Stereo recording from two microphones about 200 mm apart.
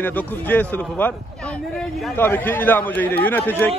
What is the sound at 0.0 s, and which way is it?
A man's voice, 10° left (ahead or behind).